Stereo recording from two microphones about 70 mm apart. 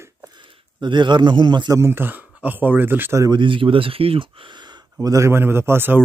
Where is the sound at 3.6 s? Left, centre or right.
Right.